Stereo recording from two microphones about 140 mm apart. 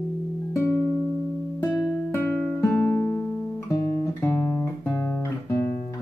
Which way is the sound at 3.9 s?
15° left (ahead or behind).